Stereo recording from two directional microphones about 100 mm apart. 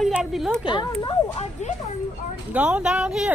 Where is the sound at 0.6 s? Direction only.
50° left (ahead or behind).